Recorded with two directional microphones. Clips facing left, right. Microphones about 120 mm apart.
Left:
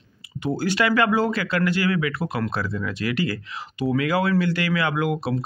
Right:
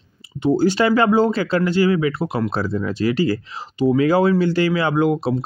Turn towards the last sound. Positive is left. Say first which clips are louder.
# right 6 dB
turn(degrees=-25)  # may be behind; listen again after turning